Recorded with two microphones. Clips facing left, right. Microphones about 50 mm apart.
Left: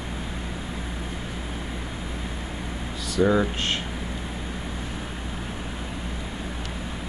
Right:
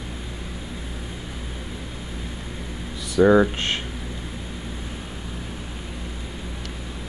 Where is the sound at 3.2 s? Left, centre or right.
Centre.